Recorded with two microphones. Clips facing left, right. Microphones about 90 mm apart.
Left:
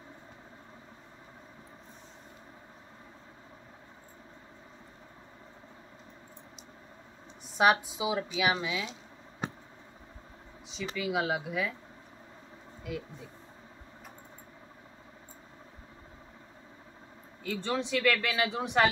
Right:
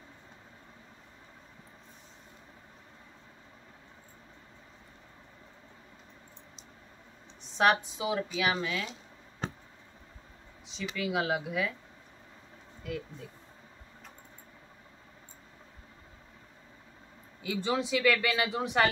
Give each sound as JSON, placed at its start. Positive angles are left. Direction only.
{"t": 7.5, "sound": "a woman's voice", "side_deg": 5}
{"t": 11.0, "sound": "a man's voice", "side_deg": 0}
{"t": 12.9, "sound": "a man's voice", "side_deg": 5}
{"t": 17.4, "sound": "a man's voice", "side_deg": -10}